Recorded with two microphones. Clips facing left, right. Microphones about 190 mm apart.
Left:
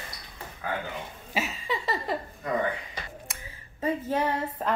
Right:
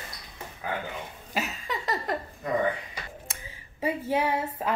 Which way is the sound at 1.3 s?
Centre (ahead or behind).